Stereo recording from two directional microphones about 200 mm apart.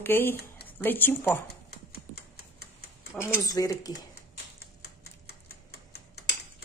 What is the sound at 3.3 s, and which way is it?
Speech, 15° left (ahead or behind).